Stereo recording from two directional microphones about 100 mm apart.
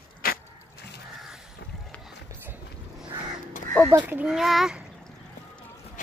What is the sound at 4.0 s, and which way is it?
Speech, 15° right (ahead or behind).